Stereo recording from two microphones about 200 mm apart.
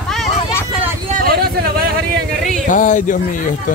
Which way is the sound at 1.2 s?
50° right (ahead or behind).